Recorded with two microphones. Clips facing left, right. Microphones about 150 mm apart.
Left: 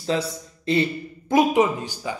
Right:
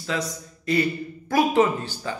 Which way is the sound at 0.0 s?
30° left (ahead or behind).